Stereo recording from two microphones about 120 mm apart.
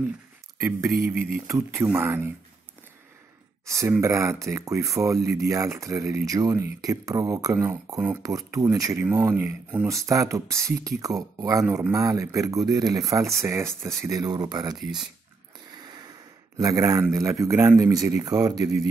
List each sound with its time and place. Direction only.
0.6 s speech: 25° right (ahead or behind)
3.6 s speech: 25° right (ahead or behind)
15.7 s a sound: 35° right (ahead or behind)
17.1 s speech: 25° right (ahead or behind)